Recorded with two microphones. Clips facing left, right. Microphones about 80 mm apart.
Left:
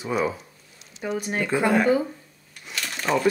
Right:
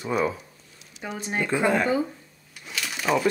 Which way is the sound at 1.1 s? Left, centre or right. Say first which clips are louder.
Left 1 dB; right.